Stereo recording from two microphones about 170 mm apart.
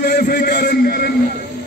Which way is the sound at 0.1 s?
60° left (ahead or behind).